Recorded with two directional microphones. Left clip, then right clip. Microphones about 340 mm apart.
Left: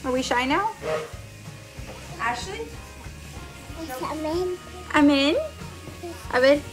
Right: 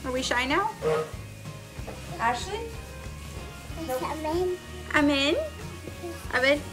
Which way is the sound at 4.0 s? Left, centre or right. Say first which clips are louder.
Left 3 dB; centre.